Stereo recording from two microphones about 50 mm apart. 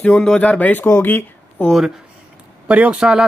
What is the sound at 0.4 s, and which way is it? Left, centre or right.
Speech, left.